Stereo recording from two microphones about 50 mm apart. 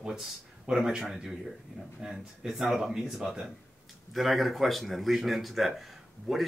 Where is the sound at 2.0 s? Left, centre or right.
Centre.